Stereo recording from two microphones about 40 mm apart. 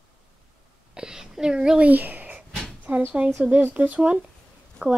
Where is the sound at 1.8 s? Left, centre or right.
Right.